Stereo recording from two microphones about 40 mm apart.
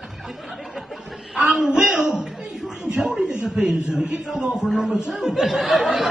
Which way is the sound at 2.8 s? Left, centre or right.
Centre.